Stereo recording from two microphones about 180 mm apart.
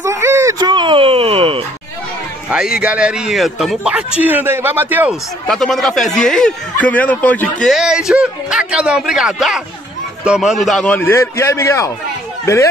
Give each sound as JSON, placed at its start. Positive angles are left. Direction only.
{"t": 0.0, "sound": "a sound", "side_deg": -15}
{"t": 2.5, "sound": "a man's voice", "side_deg": -5}
{"t": 5.5, "sound": "a man's voice", "side_deg": 0}
{"t": 7.6, "sound": "a man's voice", "side_deg": 0}